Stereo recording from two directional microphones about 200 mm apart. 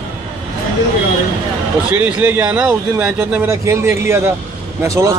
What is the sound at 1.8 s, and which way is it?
A man's voice, 5° right (ahead or behind).